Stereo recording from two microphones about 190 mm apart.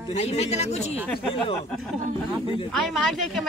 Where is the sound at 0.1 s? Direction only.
35° left (ahead or behind).